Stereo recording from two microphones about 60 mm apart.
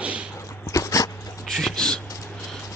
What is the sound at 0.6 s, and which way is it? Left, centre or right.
Dog, left.